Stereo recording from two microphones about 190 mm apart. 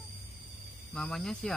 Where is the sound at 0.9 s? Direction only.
5° left (ahead or behind).